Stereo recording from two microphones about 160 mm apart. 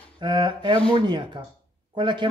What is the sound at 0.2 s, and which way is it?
Speech, 25° right (ahead or behind).